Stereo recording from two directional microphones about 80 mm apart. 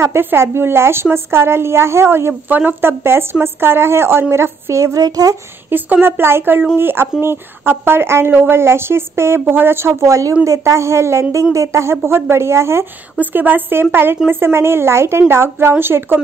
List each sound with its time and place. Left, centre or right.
0.0 s a woman's voice: right
5.0 s speech: right
5.7 s a woman's voice: right
13.2 s speech: right